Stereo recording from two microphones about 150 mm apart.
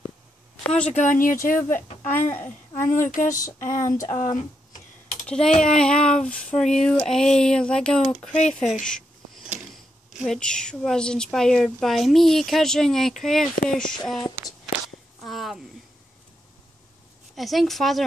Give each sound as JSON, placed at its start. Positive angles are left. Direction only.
{"t": 0.7, "sound": "speech", "side_deg": 10}
{"t": 0.9, "sound": "speech", "side_deg": 60}
{"t": 2.7, "sound": "speech", "side_deg": 55}
{"t": 3.8, "sound": "speech", "side_deg": 20}
{"t": 4.4, "sound": "a sound", "side_deg": 55}
{"t": 5.2, "sound": "a sound", "side_deg": 5}
{"t": 5.6, "sound": "a woman's voice", "side_deg": 5}
{"t": 10.0, "sound": "a woman's voice", "side_deg": 0}
{"t": 15.2, "sound": "a sound", "side_deg": 0}
{"t": 17.4, "sound": "a woman's voice", "side_deg": 0}